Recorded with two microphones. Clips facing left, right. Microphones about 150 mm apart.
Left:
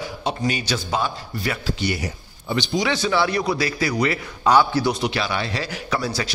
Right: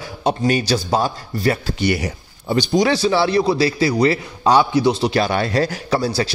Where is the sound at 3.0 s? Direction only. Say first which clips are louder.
Right 5 dB; 30° right (ahead or behind).